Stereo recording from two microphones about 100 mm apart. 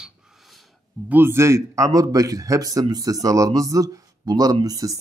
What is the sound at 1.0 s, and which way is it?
Speech, 20° right (ahead or behind).